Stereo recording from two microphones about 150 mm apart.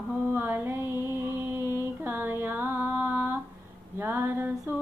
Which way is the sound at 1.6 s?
15° right (ahead or behind).